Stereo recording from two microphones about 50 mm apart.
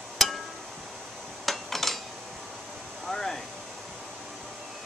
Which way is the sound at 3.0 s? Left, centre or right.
Centre.